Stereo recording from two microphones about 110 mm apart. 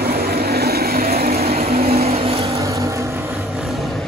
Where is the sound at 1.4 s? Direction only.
65° right (ahead or behind).